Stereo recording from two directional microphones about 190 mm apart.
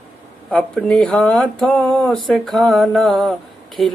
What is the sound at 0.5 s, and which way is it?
Speech, 5° left (ahead or behind).